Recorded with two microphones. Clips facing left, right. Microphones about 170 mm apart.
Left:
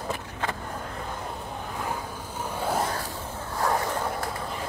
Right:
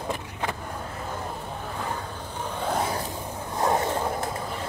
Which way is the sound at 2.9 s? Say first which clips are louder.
Right 2 dB; 20° right (ahead or behind).